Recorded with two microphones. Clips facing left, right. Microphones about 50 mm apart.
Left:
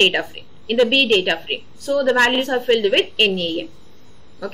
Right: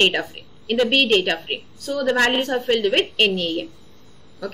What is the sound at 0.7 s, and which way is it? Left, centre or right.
A woman's voice, centre.